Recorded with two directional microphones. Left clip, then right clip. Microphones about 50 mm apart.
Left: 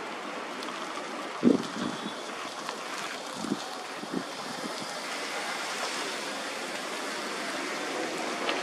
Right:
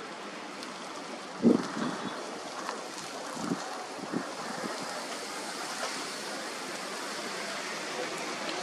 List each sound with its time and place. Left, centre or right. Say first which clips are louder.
1.4 s vehicle: left 1 dB; left